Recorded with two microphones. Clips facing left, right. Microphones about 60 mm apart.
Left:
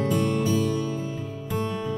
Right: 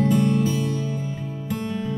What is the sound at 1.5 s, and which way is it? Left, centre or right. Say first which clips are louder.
Music: even; centre.